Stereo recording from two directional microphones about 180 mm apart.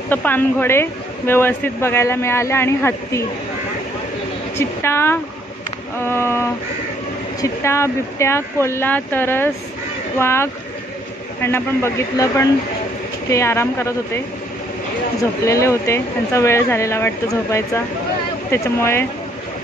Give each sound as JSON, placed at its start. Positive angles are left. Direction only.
{"t": 0.1, "sound": "a woman's voice", "side_deg": 10}
{"t": 4.6, "sound": "a woman's voice", "side_deg": 15}
{"t": 15.4, "sound": "a woman's voice", "side_deg": 15}